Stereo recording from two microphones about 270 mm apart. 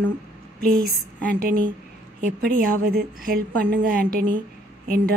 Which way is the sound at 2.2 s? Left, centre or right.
Right.